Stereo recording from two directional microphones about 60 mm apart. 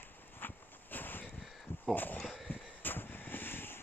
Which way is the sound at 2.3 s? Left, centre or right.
Centre.